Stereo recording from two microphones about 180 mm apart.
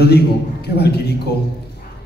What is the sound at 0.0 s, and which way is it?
A man's voice, 65° left (ahead or behind).